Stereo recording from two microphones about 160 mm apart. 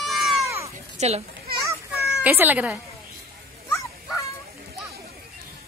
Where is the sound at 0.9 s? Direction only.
40° right (ahead or behind).